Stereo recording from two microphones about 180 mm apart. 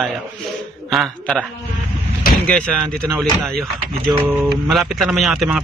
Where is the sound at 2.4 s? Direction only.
5° left (ahead or behind).